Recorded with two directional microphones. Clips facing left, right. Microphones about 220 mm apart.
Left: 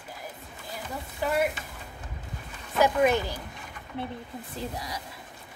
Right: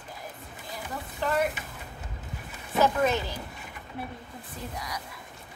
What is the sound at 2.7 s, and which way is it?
Speech, 15° left (ahead or behind).